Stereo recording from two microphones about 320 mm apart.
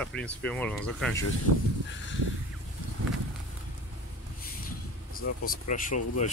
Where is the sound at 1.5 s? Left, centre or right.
Right.